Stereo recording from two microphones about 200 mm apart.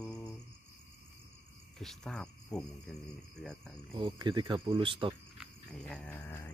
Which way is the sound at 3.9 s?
25° right (ahead or behind).